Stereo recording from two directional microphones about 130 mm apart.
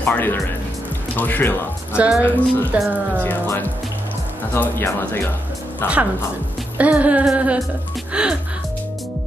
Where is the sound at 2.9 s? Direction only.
10° right (ahead or behind).